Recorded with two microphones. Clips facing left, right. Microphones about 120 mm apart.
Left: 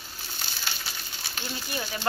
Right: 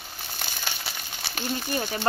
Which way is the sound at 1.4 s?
50° right (ahead or behind).